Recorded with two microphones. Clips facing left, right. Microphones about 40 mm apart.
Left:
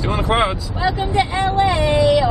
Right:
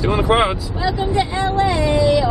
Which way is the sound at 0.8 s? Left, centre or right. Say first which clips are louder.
Left 1 dB; left.